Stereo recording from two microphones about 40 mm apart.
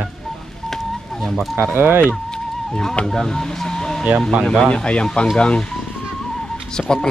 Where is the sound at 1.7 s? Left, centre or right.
Right.